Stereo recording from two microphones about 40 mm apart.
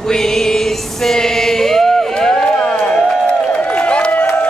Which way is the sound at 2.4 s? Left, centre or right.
Left.